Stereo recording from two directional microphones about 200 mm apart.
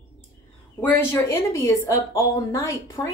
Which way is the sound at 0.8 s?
10° left (ahead or behind).